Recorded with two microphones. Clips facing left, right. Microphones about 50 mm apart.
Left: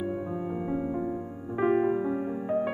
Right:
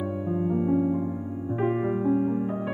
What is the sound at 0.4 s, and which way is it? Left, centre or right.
Music, centre.